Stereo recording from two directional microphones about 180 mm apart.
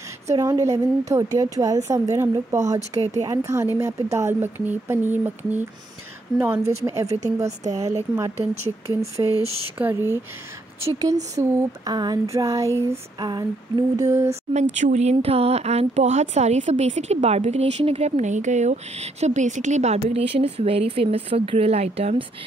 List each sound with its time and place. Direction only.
0.3 s a woman's voice: 20° right (ahead or behind)
7.1 s speech: 40° right (ahead or behind)
7.6 s a woman's voice: 20° right (ahead or behind)
9.4 s speech: 35° right (ahead or behind)
9.8 s a woman's voice: 10° right (ahead or behind)
11.3 s a woman's voice: 20° right (ahead or behind)
14.3 s speech: 40° right (ahead or behind)